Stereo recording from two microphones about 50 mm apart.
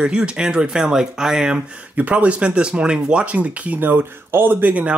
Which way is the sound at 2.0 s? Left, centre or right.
Right.